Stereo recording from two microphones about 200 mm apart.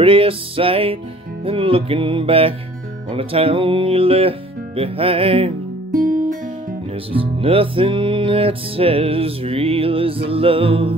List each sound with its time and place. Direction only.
0.0 s music: 25° right (ahead or behind)
7.1 s music: 25° right (ahead or behind)